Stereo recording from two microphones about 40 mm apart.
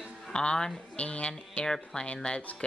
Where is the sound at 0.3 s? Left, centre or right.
Left.